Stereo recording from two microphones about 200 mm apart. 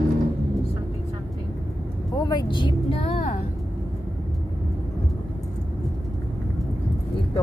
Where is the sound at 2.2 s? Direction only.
25° left (ahead or behind).